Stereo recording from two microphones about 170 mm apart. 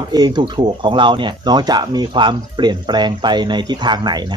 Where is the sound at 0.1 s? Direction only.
25° right (ahead or behind).